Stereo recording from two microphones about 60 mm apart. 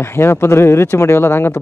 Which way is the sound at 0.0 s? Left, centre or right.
Left.